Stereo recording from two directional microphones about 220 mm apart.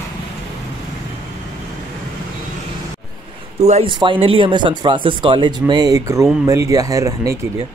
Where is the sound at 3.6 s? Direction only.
25° right (ahead or behind).